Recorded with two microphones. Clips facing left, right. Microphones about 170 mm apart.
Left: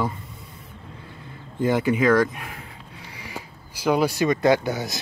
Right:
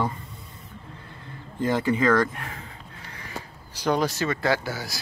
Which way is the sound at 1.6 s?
10° left (ahead or behind).